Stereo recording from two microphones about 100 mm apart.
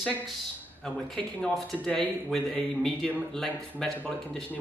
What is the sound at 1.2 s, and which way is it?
Speech, 10° left (ahead or behind).